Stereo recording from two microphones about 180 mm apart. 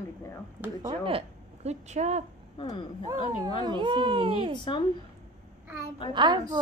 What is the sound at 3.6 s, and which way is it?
Speech, 25° right (ahead or behind).